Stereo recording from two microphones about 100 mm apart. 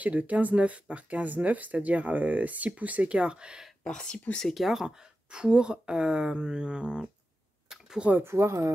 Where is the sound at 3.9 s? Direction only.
10° left (ahead or behind).